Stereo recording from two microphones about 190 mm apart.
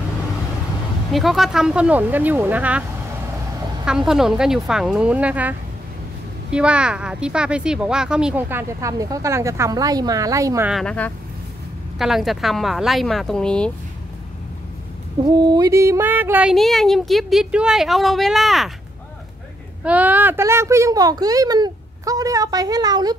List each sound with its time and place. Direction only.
1.1 s speech: centre (ahead or behind)
3.8 s speech: 5° right (ahead or behind)
10.7 s speech: 5° left (ahead or behind)
15.2 s speech: 25° right (ahead or behind); by 18.7 s centre (ahead or behind)
19.8 s speech: 10° right (ahead or behind)